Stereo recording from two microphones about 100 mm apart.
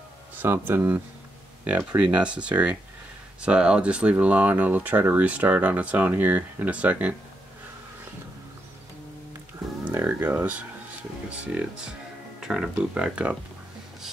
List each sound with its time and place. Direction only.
0.4 s speech: 20° right (ahead or behind)
9.8 s music: 20° right (ahead or behind)
11.2 s speech: 10° right (ahead or behind)